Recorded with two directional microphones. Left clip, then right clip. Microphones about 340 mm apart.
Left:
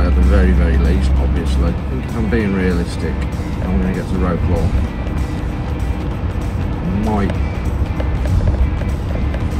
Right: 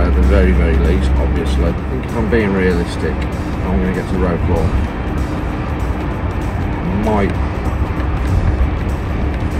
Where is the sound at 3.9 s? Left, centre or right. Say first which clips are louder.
Right 2 dB; centre.